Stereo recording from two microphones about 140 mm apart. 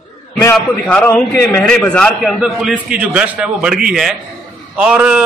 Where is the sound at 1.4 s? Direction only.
15° left (ahead or behind).